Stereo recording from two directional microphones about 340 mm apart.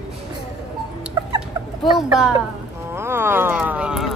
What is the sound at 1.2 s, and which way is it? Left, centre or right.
Chicken, centre.